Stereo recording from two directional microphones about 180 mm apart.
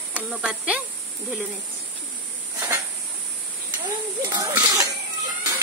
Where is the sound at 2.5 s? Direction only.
15° right (ahead or behind).